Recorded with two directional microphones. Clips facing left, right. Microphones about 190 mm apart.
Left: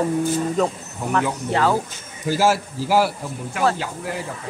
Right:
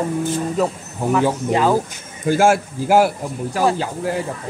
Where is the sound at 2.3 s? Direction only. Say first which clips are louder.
Right 4 dB; 50° right (ahead or behind).